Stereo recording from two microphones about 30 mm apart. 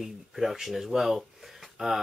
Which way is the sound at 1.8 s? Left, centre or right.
Right.